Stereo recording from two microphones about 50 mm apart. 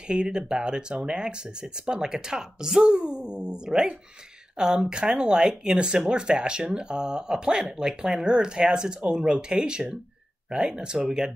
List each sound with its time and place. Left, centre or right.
0.1 s speech: centre